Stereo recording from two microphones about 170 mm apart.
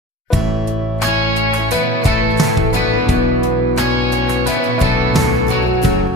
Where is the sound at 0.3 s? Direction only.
Centre (ahead or behind).